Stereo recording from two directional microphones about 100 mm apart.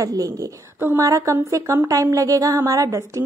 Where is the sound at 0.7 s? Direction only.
20° right (ahead or behind).